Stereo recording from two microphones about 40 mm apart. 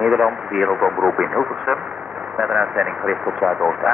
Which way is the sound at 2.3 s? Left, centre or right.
Right.